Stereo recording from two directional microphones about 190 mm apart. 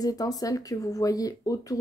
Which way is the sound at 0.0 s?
20° left (ahead or behind).